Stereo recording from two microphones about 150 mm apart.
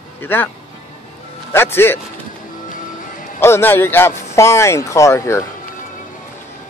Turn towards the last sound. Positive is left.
turn(degrees=20)  # may be behind; listen again after turning